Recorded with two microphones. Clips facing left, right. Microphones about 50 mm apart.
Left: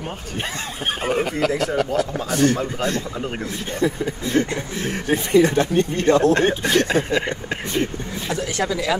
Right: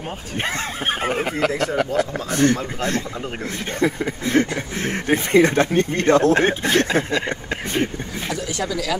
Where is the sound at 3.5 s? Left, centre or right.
Right.